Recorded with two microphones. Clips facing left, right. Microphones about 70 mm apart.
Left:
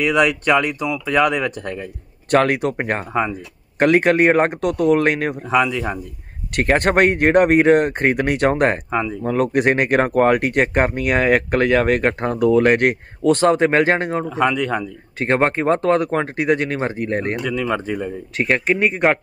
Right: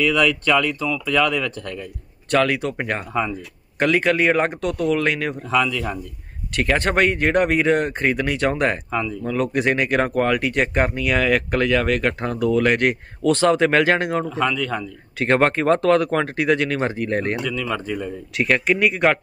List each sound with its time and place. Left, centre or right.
0.0 s speech: left
2.3 s speech: left
2.8 s speech: left
3.8 s speech: left
5.6 s speech: left
6.5 s speech: left
8.9 s speech: left